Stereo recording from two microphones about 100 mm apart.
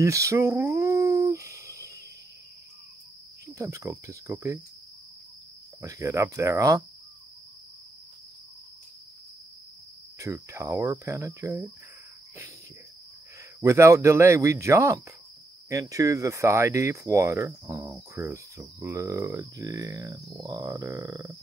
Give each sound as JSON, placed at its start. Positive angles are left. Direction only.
{"t": 0.0, "sound": "speech", "side_deg": -30}
{"t": 0.7, "sound": "a sound", "side_deg": -30}
{"t": 3.5, "sound": "speech", "side_deg": -30}
{"t": 5.8, "sound": "speech", "side_deg": -30}
{"t": 10.1, "sound": "speech", "side_deg": -30}
{"t": 13.6, "sound": "speech", "side_deg": -30}